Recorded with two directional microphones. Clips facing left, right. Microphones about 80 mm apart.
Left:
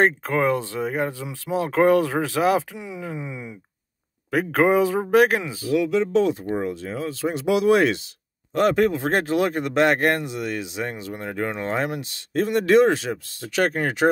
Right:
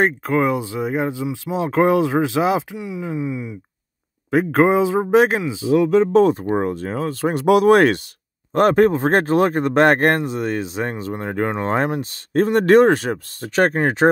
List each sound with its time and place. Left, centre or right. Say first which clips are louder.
0.0 s speech: right 2 dB; centre
2.8 s speech: right 6 dB; centre
4.3 s speech: right 3 dB; centre
5.8 s speech: right 6 dB; right